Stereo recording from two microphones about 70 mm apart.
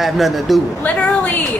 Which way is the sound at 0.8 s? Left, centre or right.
Left.